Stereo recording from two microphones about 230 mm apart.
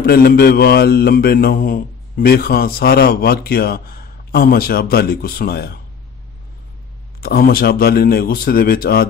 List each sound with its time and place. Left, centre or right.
0.0 s mantra: left
7.2 s mantra: left